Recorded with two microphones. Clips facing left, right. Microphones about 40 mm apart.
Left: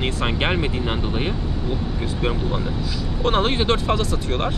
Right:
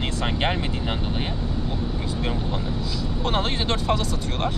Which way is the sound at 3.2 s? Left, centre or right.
Centre.